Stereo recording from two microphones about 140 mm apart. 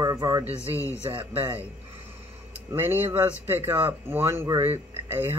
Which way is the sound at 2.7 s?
15° right (ahead or behind).